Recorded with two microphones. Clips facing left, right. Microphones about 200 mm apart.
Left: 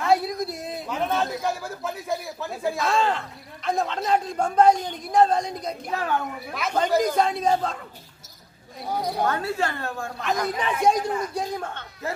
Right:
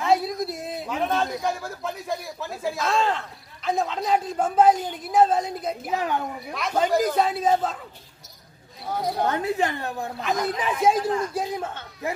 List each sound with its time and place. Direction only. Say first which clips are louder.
0.0 s a man's voice: even; centre (ahead or behind)
5.9 s a woman's voice: left 1 dB; 15° right (ahead or behind)
6.5 s speech: even; centre (ahead or behind)
9.2 s a woman's voice: right 2 dB; 20° right (ahead or behind)
10.2 s a woman's voice: even; centre (ahead or behind)